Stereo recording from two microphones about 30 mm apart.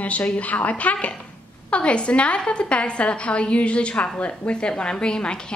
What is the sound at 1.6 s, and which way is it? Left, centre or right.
A woman's voice, left.